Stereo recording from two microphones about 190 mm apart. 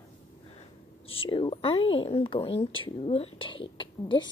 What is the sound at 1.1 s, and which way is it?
Speech, 30° left (ahead or behind).